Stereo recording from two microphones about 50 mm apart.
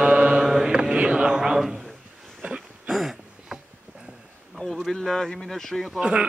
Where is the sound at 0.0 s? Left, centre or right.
Centre.